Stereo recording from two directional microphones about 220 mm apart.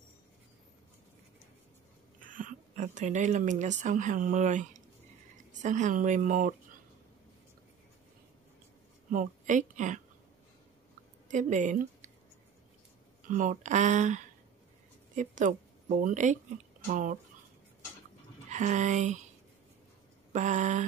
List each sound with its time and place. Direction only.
2.1 s speech: 35° right (ahead or behind)
9.1 s a woman's voice: 35° right (ahead or behind)
11.2 s speech: 35° right (ahead or behind)
13.3 s a woman's voice: 35° right (ahead or behind)
18.5 s speech: 35° right (ahead or behind)
20.3 s speech: 35° right (ahead or behind)